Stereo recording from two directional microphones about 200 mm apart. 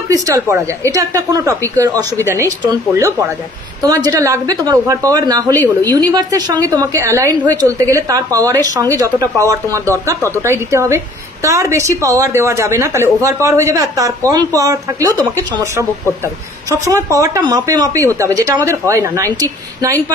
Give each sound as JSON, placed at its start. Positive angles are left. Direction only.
{"t": 0.1, "sound": "a woman's voice", "side_deg": -15}